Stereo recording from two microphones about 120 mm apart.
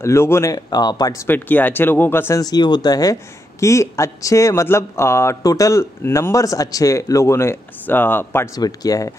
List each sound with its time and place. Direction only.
0.0 s speech: 20° left (ahead or behind)
1.2 s speech: 15° left (ahead or behind)
2.4 s speech: 35° left (ahead or behind); by 8.5 s 20° left (ahead or behind)
8.5 s speech: 30° left (ahead or behind)